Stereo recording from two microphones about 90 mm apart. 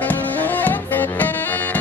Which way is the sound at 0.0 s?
20° left (ahead or behind).